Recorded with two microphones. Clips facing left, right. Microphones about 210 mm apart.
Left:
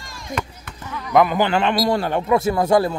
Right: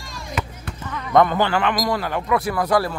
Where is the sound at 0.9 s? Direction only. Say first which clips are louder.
Even; 5° left (ahead or behind).